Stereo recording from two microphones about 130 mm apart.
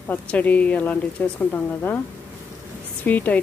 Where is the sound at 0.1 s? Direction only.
10° left (ahead or behind).